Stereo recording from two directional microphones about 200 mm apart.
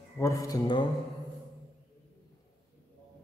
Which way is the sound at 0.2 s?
15° left (ahead or behind).